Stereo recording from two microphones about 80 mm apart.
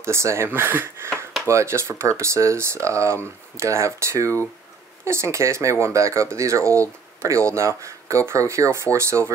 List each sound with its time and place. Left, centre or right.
0.0 s speech: right